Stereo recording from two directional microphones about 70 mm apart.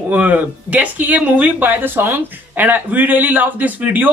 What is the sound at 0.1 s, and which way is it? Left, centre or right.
Speech, right.